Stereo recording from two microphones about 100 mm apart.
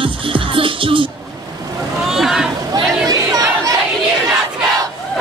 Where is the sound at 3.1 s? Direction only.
35° right (ahead or behind).